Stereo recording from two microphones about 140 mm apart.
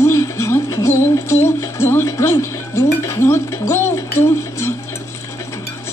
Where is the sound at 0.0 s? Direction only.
20° left (ahead or behind).